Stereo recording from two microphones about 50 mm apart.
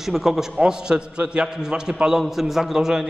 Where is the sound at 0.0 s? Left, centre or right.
Centre.